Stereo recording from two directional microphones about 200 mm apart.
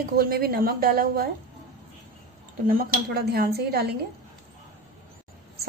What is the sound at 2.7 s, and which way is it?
A woman's voice, 50° right (ahead or behind).